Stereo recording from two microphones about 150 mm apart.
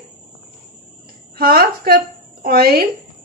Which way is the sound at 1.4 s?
80° right.